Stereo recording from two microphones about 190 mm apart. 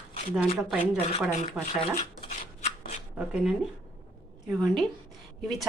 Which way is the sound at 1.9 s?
35° left (ahead or behind).